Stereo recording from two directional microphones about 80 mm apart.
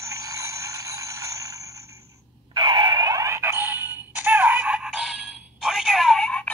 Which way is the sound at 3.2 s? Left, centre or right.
Right.